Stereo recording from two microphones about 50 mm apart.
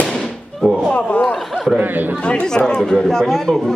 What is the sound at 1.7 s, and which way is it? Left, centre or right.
Speech, right.